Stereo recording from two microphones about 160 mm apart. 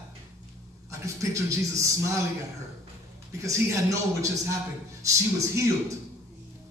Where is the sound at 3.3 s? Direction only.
20° right (ahead or behind).